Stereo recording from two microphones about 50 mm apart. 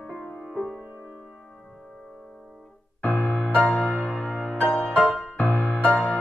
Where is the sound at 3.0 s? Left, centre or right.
Left.